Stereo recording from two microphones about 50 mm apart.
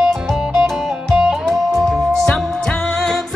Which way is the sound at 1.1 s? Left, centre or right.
Centre.